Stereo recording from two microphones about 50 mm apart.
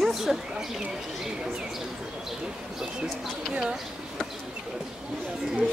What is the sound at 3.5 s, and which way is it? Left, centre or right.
Speech, centre.